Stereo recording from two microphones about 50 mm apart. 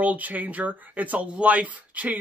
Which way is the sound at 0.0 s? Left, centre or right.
Right.